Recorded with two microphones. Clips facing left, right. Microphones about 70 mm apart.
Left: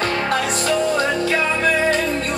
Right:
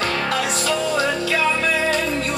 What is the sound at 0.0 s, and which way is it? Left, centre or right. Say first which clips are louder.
Music: left 2 dB; left.